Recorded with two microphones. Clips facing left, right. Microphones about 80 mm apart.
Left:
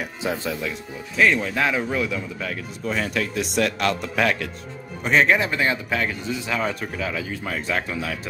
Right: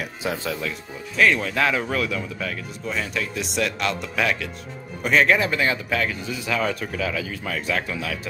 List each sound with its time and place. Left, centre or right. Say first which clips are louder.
0.5 s speech: left 1 dB; centre
2.9 s speech: left 3 dB; left
5.0 s speech: even; left